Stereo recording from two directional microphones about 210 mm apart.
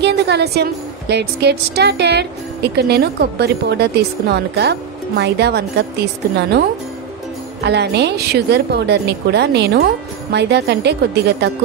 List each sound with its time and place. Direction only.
0.0 s a woman's voice: 50° right (ahead or behind)
7.6 s a woman's voice: 55° right (ahead or behind)